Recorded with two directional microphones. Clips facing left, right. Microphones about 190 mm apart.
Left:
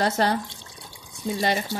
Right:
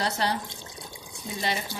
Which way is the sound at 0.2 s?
50° left (ahead or behind).